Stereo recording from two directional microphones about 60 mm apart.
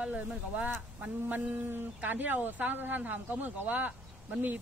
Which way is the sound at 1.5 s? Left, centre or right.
Right.